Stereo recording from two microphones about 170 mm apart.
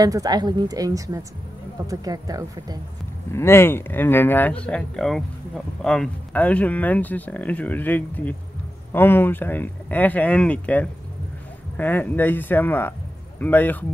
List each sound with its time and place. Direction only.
0.0 s speech: 20° right (ahead or behind)
3.3 s speech: 15° left (ahead or behind)